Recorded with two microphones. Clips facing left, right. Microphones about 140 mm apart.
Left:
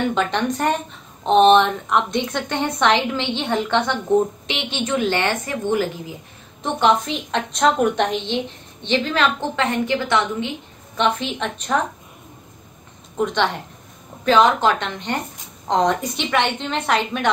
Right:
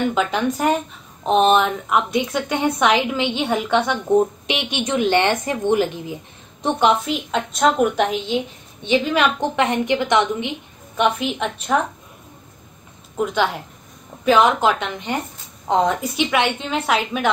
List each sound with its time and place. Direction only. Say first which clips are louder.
0.1 s a woman's voice: right 1 dB; 5° right (ahead or behind); by 6.1 s 20° right (ahead or behind)
6.9 s a woman's voice: even; 5° right (ahead or behind)
13.2 s a woman's voice: even; 5° right (ahead or behind)